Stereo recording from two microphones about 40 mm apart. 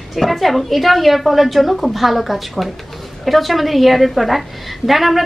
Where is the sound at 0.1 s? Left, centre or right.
Centre.